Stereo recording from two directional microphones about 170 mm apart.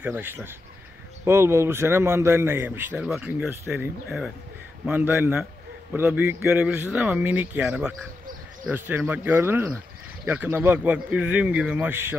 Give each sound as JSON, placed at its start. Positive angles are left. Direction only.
{"t": 0.0, "sound": "a man's voice", "side_deg": -10}